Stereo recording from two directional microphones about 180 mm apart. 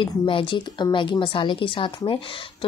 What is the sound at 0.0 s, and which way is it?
Speech, 30° left (ahead or behind).